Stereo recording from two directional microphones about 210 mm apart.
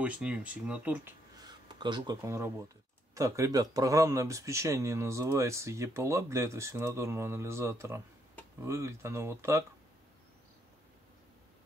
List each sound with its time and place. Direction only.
0.0 s speech: 5° right (ahead or behind)
1.4 s speech: 20° right (ahead or behind)